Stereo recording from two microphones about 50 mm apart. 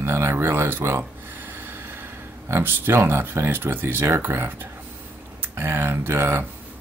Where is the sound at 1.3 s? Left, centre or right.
Right.